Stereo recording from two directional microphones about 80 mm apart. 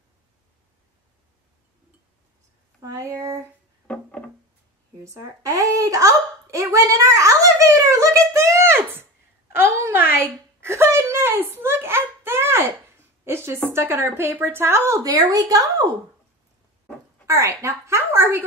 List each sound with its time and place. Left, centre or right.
2.8 s a woman's voice: right
3.8 s music: centre
5.0 s speech: right
9.8 s a sound: right
13.2 s a woman's voice: right
15.0 s a woman's voice: right
17.3 s a woman's voice: right